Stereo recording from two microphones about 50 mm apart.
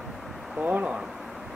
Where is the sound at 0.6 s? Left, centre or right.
Right.